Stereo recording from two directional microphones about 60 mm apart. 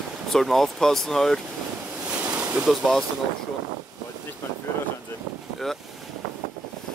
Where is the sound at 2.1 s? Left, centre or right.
Right.